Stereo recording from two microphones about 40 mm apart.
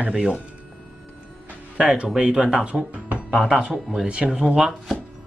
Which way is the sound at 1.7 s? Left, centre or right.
Right.